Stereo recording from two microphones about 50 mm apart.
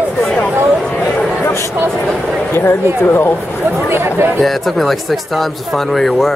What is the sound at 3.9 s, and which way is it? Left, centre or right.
Speech, right.